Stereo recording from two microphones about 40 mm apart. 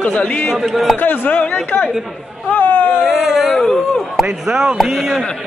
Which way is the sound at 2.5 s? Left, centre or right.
Left.